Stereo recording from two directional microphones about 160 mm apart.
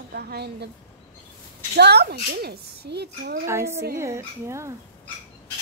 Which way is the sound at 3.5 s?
15° right (ahead or behind).